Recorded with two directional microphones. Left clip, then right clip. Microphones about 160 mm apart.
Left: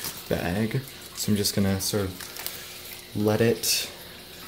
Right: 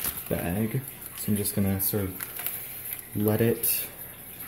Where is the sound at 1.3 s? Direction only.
20° left (ahead or behind).